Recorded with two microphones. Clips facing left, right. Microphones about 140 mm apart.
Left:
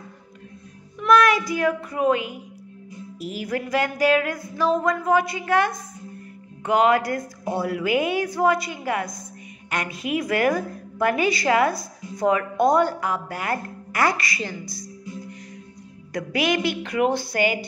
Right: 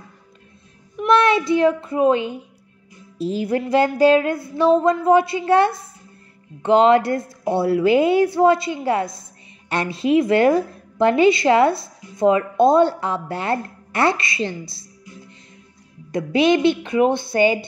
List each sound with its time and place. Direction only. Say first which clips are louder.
0.9 s a child's voice: right 2 dB; 25° right (ahead or behind)